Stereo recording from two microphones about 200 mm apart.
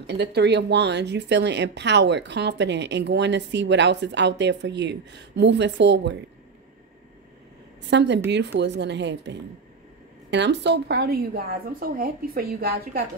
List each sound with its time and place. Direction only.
0.0 s speech: 55° right (ahead or behind)
7.9 s a woman's voice: 60° right (ahead or behind)